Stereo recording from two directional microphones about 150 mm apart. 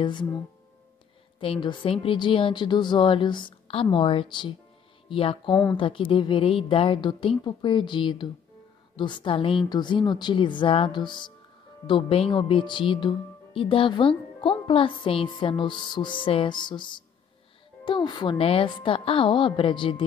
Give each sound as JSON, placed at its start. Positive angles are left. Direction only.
{"t": 0.0, "sound": "speech", "side_deg": 30}
{"t": 1.4, "sound": "speech", "side_deg": 35}